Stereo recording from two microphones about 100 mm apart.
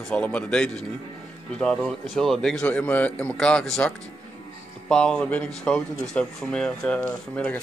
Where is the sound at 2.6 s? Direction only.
15° left (ahead or behind).